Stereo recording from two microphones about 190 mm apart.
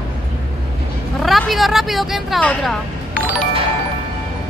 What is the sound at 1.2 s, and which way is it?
A woman's voice, centre (ahead or behind).